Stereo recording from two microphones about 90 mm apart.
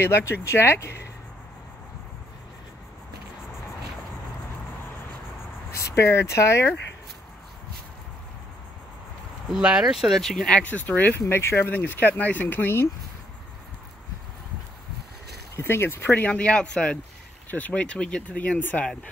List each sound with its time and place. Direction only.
0.0 s speech: 30° left (ahead or behind)
5.7 s speech: 30° left (ahead or behind)
9.5 s speech: 10° right (ahead or behind); by 11.1 s 20° left (ahead or behind)
11.1 s speech: 30° left (ahead or behind)
15.5 s speech: 25° left (ahead or behind)
16.3 s speech: 10° left (ahead or behind)